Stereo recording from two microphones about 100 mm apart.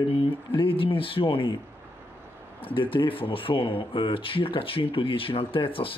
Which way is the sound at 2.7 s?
60° left (ahead or behind).